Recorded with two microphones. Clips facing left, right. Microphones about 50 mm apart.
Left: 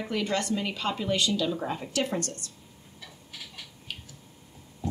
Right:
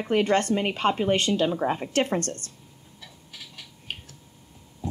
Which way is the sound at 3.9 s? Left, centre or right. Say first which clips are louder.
Right 4 dB; right.